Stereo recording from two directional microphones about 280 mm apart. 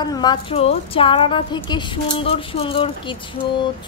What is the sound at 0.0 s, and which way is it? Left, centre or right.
A woman's voice, centre.